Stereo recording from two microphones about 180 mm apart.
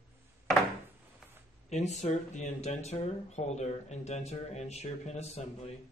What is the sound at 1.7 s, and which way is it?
Speech, 40° left (ahead or behind).